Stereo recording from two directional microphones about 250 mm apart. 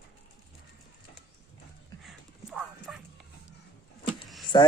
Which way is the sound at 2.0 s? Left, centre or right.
Centre.